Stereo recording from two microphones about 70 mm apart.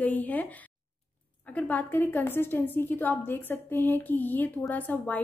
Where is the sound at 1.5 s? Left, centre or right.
Left.